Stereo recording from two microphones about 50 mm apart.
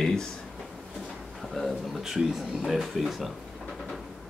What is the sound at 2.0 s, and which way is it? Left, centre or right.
Speech, centre.